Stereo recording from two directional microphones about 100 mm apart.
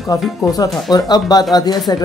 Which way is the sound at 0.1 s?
40° left (ahead or behind).